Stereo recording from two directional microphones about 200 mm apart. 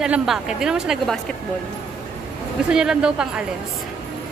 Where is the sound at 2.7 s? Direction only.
5° right (ahead or behind).